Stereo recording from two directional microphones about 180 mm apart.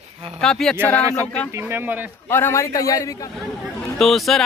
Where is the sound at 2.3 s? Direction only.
15° left (ahead or behind).